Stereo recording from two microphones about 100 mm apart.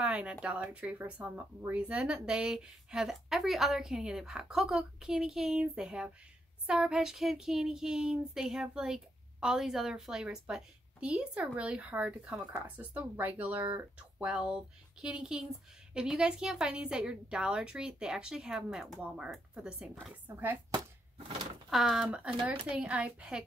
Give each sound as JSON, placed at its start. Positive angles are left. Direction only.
{"t": 0.0, "sound": "a woman's voice", "side_deg": -10}
{"t": 20.2, "sound": "speech", "side_deg": -20}
{"t": 21.6, "sound": "a woman's voice", "side_deg": -5}